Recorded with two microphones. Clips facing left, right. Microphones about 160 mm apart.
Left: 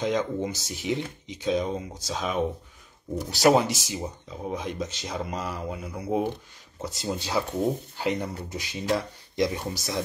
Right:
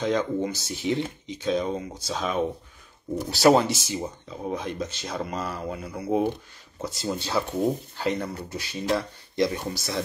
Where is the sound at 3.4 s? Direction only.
10° left (ahead or behind).